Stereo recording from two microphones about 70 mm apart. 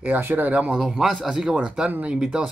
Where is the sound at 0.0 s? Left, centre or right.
Right.